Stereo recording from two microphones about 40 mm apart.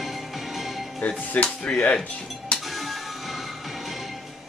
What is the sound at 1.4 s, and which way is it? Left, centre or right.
Speech, left.